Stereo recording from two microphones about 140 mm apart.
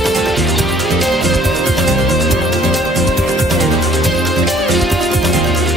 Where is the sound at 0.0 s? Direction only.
Centre (ahead or behind).